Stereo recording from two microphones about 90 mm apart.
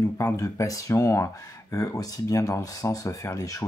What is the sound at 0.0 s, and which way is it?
Speech, 35° left (ahead or behind).